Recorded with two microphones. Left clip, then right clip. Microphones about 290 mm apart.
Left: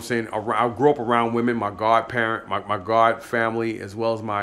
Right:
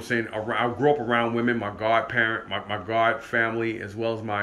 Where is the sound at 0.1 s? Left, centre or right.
Centre.